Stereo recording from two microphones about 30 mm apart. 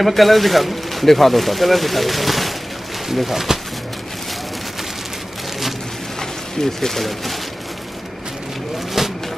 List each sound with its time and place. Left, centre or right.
0.0 s speech: centre
6.6 s speech: centre
7.0 s speech: centre
8.7 s vehicle: centre